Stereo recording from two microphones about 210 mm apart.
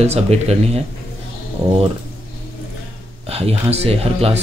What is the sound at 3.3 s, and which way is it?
Speech, 30° right (ahead or behind).